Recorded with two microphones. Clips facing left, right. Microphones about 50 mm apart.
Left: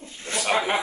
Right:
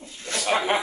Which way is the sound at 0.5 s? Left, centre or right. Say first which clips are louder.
Right 1 dB; centre.